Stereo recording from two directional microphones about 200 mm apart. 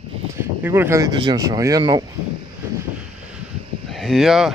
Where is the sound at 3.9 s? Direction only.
Centre (ahead or behind).